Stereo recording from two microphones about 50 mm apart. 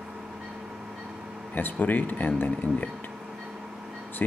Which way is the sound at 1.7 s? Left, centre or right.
Left.